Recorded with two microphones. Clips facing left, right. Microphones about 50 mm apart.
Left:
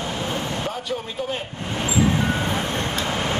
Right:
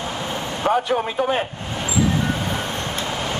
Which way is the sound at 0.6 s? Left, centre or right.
Right.